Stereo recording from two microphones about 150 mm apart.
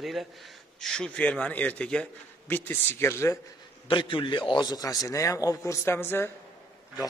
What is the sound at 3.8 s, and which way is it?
A man's voice, 35° left (ahead or behind).